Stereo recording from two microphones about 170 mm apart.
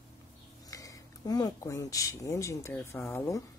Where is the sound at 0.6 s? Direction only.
20° left (ahead or behind).